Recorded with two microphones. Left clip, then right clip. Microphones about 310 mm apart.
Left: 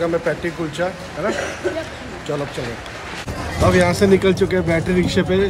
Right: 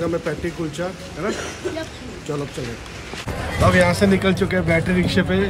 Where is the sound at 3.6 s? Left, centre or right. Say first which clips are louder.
Left 1 dB; centre.